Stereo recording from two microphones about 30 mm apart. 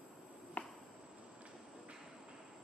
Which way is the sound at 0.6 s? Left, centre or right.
Left.